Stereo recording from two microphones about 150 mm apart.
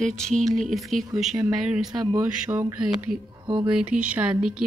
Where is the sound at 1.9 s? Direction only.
25° right (ahead or behind).